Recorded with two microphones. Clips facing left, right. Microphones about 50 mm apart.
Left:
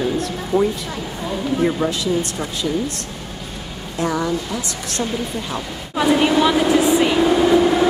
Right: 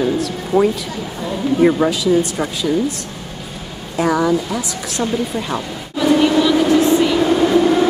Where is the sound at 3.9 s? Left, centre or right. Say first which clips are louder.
Right 5 dB; centre.